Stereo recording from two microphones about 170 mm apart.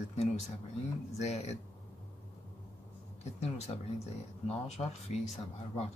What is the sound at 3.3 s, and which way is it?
Speech, 40° left (ahead or behind).